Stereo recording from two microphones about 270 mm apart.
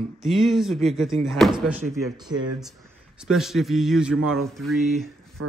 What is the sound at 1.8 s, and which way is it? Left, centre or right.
Speech, centre.